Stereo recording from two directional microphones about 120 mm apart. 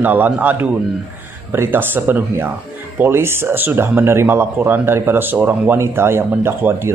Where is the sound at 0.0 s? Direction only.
15° right (ahead or behind).